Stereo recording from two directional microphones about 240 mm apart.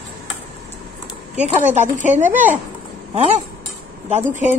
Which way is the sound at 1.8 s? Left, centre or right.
Right.